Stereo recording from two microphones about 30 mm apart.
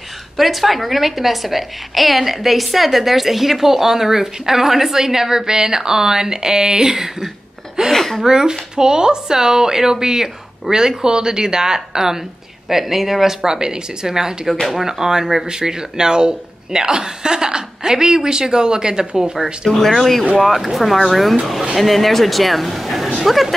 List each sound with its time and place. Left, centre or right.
0.4 s a woman's voice: centre
7.9 s a sound: centre
8.3 s speech: right
12.6 s a woman's voice: centre; by 19.3 s right
19.7 s speech: centre